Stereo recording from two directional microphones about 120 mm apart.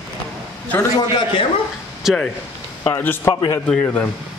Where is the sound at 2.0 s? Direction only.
Centre (ahead or behind).